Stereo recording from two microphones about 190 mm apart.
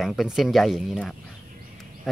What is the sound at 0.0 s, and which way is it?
Speech, centre (ahead or behind).